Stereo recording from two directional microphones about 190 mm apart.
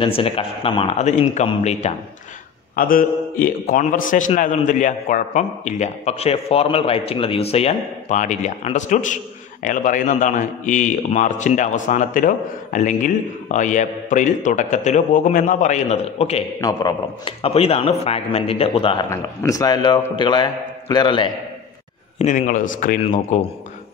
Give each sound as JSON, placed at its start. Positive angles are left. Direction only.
{"t": 0.0, "sound": "a man's voice", "side_deg": 30}
{"t": 0.9, "sound": "a man's voice", "side_deg": 35}
{"t": 2.7, "sound": "a man's voice", "side_deg": 45}
{"t": 19.0, "sound": "a man's voice", "side_deg": 15}
{"t": 22.2, "sound": "a man's voice", "side_deg": 40}